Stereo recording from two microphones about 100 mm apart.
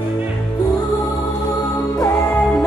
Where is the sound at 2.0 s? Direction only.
25° left (ahead or behind).